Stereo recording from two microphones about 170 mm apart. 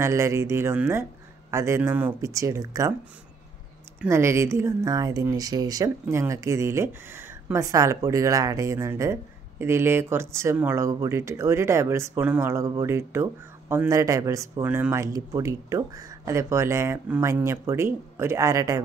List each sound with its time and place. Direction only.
0.0 s speech: 15° right (ahead or behind)
4.0 s speech: 15° right (ahead or behind)